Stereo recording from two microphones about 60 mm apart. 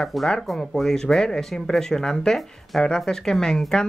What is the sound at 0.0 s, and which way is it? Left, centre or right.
Speech, centre.